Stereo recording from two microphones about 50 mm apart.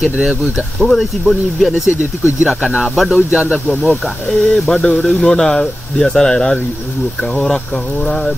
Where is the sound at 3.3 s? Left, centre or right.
Right.